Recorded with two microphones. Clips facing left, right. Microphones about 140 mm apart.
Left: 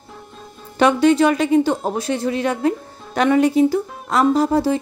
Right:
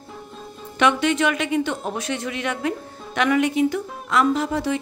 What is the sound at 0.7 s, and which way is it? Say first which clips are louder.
Speech: left 6 dB; 35° left (ahead or behind).